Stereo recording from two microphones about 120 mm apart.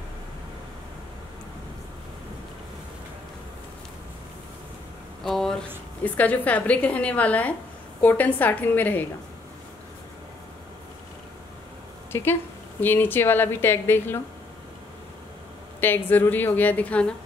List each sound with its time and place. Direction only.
5.2 s a sound: 5° left (ahead or behind)
6.0 s a woman's voice: 15° left (ahead or behind)
12.1 s a woman's voice: 20° left (ahead or behind)
15.8 s a woman's voice: 15° left (ahead or behind)